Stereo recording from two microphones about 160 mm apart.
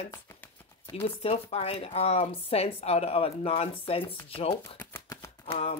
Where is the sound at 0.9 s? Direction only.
35° left (ahead or behind).